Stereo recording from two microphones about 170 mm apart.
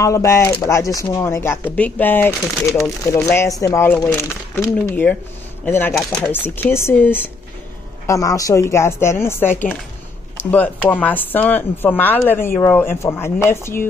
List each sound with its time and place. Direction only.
0.0 s speech: 20° left (ahead or behind)